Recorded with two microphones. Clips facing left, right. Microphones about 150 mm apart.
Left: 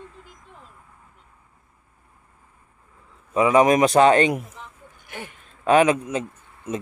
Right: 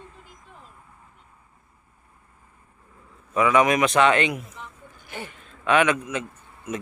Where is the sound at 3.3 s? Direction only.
30° left (ahead or behind).